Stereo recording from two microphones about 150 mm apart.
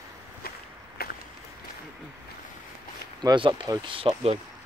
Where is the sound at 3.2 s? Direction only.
30° right (ahead or behind).